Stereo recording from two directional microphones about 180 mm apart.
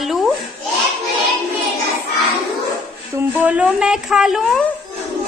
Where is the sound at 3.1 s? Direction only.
10° right (ahead or behind).